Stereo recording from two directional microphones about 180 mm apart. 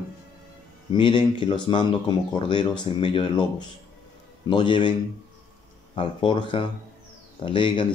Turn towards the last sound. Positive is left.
turn(degrees=30)  # may be behind; listen again after turning